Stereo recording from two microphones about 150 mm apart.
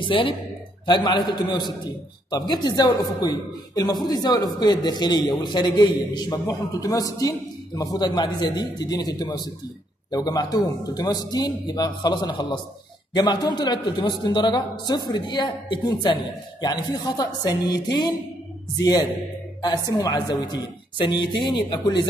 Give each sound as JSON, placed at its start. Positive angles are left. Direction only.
{"t": 0.0, "sound": "a man's voice", "side_deg": 35}